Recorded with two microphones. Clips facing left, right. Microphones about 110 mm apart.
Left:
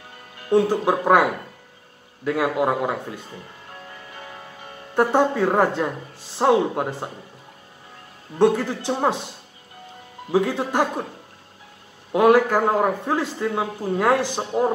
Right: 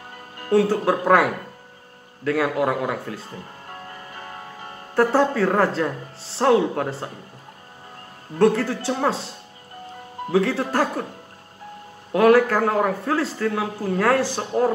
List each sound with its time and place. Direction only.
0.5 s a man's voice: 15° left (ahead or behind)
4.1 s music: 40° right (ahead or behind)
4.9 s a man's voice: 20° left (ahead or behind)
8.4 s a man's voice: 15° left (ahead or behind)
10.3 s a man's voice: 15° left (ahead or behind)
12.1 s a man's voice: 15° left (ahead or behind)